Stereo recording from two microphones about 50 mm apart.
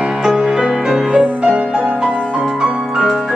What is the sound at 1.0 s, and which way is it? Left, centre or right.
Music, right.